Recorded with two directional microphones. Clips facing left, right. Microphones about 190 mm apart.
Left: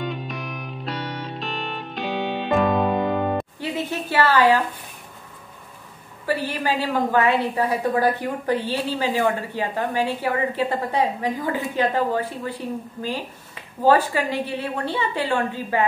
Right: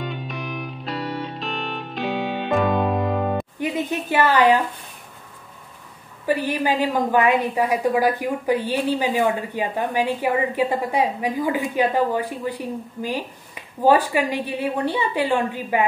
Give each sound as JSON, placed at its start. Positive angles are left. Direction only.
{"t": 0.0, "sound": "music", "side_deg": 0}
{"t": 3.5, "sound": "a sound", "side_deg": -15}
{"t": 6.2, "sound": "a woman's voice", "side_deg": -15}